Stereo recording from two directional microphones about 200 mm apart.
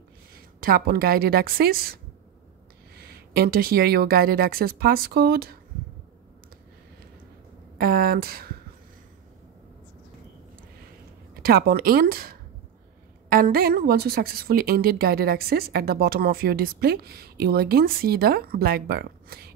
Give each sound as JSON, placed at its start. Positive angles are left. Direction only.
{"t": 0.6, "sound": "a woman's voice", "side_deg": -45}
{"t": 3.0, "sound": "a woman's voice", "side_deg": -50}
{"t": 7.7, "sound": "a woman's voice", "side_deg": -50}
{"t": 11.4, "sound": "a woman's voice", "side_deg": -50}